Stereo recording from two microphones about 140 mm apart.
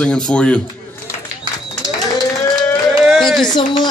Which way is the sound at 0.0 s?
5° left (ahead or behind).